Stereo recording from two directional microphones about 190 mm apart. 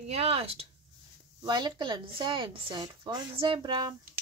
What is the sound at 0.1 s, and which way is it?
Speech, 30° right (ahead or behind).